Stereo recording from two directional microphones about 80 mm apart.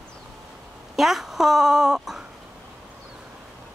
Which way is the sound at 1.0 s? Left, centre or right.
Centre.